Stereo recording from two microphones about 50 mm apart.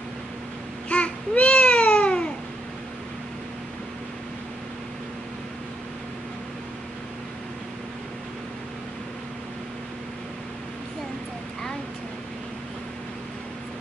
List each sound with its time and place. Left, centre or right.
0.8 s babbling: left